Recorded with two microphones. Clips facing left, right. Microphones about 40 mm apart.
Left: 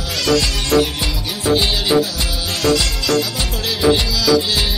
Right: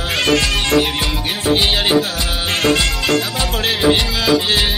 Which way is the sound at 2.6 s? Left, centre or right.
Right.